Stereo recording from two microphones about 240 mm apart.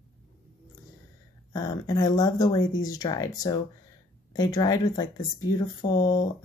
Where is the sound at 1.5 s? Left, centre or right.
Centre.